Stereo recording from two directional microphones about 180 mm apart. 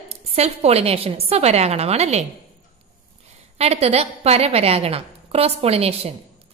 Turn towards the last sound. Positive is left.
turn(degrees=-35)  # may be behind; listen again after turning